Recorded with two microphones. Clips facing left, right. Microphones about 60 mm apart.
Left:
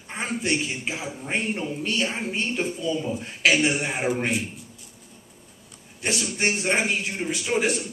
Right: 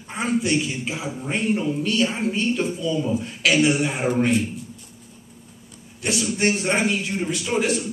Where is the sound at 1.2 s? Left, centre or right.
Centre.